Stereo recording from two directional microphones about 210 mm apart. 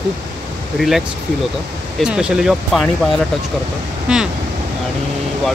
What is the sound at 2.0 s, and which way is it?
Speech, 5° right (ahead or behind).